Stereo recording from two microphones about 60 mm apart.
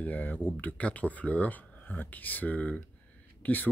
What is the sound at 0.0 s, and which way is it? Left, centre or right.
Speech, left.